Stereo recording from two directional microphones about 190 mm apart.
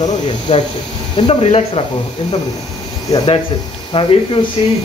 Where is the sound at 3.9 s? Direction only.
30° left (ahead or behind).